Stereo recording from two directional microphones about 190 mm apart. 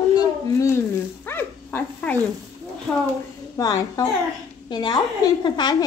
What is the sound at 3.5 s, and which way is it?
A woman's voice, 20° left (ahead or behind).